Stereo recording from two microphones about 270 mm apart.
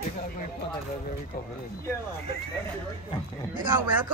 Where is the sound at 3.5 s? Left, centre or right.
Centre.